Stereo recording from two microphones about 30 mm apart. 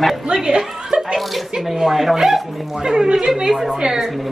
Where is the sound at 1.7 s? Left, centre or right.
Centre.